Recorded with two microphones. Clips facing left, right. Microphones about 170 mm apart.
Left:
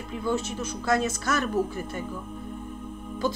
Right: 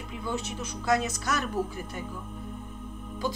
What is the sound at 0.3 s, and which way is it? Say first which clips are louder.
Speech: left 5 dB; 15° right (ahead or behind).